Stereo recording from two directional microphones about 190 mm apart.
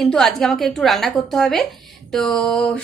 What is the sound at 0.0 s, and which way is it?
A woman's voice, centre (ahead or behind).